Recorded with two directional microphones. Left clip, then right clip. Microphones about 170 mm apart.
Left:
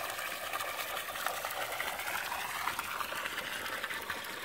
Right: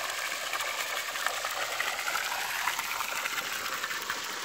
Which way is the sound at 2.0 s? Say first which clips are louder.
Right 5 dB; 10° right (ahead or behind).